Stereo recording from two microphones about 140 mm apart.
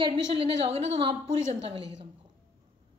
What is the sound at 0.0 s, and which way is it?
A woman's voice, 40° right (ahead or behind).